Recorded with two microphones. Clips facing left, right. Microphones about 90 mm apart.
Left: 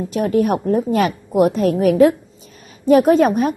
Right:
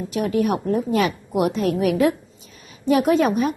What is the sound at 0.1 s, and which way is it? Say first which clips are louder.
A woman's voice: left 4 dB; 40° left (ahead or behind).